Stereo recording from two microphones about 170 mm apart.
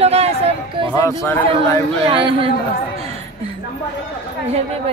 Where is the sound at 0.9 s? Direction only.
15° left (ahead or behind).